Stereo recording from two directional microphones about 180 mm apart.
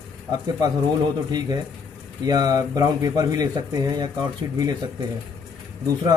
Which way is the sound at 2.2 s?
20° right (ahead or behind).